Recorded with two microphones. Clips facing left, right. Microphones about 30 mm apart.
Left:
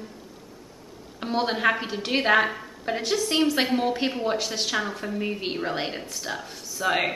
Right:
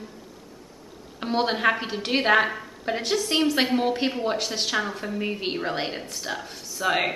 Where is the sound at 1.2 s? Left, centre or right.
Centre.